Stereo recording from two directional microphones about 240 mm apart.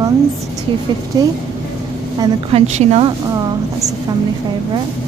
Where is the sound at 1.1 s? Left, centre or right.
Centre.